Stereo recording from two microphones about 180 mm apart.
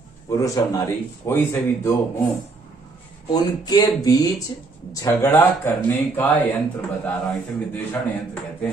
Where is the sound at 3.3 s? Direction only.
20° left (ahead or behind).